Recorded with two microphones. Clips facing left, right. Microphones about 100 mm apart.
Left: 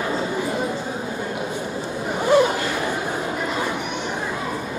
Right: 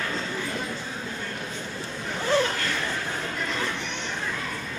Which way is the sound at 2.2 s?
15° left (ahead or behind).